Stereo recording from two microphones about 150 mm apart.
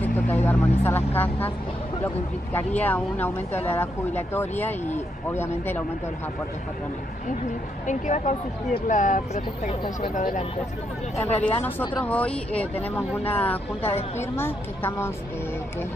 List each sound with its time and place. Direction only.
0.0 s speech: 10° left (ahead or behind)
2.8 s speech: 10° left (ahead or behind)
7.8 s speech: 55° left (ahead or behind)
11.2 s speech: 10° left (ahead or behind)